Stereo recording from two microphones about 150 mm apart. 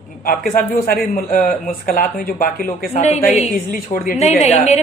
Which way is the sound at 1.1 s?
55° left (ahead or behind).